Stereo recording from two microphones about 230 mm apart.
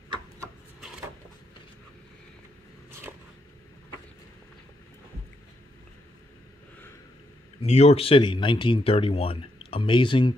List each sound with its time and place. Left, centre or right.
7.6 s speech: left